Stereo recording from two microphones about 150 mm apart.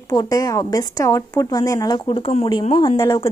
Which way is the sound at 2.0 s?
35° left (ahead or behind).